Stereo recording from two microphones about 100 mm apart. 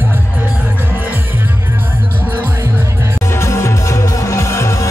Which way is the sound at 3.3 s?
30° left (ahead or behind).